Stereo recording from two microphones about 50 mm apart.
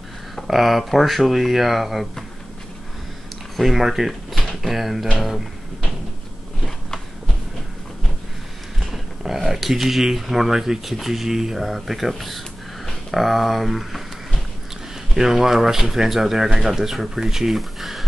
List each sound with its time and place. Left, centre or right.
0.5 s speech: centre
3.5 s speech: centre
8.9 s speech: centre